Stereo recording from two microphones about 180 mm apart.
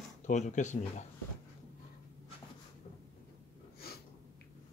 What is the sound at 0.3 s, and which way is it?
Speech, 45° left (ahead or behind).